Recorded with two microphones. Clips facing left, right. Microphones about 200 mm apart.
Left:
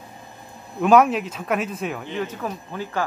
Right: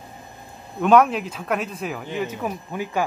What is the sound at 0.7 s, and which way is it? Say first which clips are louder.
Speech: even; 5° left (ahead or behind).